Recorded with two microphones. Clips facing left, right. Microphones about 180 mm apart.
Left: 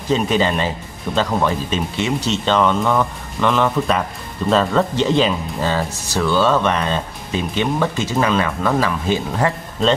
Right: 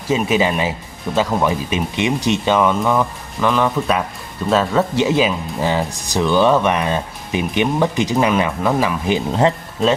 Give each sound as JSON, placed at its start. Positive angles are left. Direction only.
{"t": 0.1, "sound": "speech", "side_deg": -5}